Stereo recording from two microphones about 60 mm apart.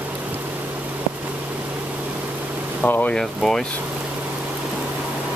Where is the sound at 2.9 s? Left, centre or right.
Left.